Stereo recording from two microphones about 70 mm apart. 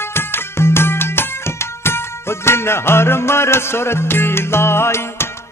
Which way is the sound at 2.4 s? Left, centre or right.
Left.